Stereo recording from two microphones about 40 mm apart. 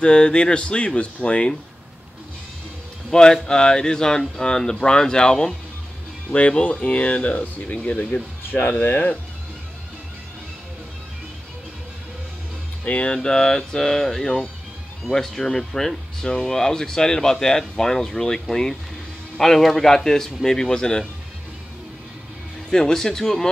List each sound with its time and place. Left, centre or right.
0.0 s speech: left
3.1 s speech: centre
6.6 s speech: left
8.5 s speech: left
8.8 s speech: left
12.8 s speech: left
13.1 s speech: centre
22.7 s speech: centre